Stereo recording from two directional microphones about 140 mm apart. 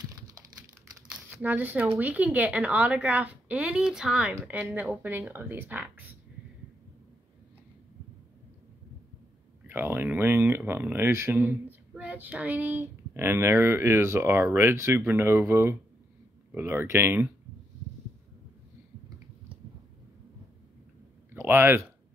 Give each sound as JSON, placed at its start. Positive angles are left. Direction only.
{"t": 1.4, "sound": "speech", "side_deg": -15}
{"t": 9.7, "sound": "speech", "side_deg": -15}
{"t": 21.4, "sound": "speech", "side_deg": -15}